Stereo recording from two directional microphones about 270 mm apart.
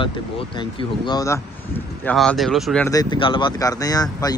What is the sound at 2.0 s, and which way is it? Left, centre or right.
Speech, centre.